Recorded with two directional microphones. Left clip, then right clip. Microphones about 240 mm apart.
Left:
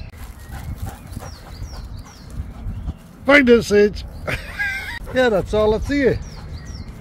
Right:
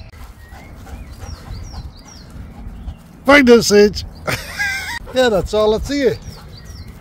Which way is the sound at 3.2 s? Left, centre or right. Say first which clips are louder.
Right 3 dB; right.